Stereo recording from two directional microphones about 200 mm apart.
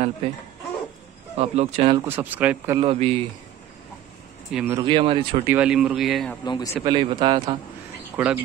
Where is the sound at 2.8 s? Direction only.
30° right (ahead or behind).